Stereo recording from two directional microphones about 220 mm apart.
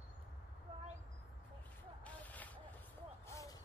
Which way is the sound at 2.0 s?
5° left (ahead or behind).